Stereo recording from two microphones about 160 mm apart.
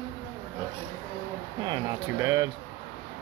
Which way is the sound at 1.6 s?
25° right (ahead or behind).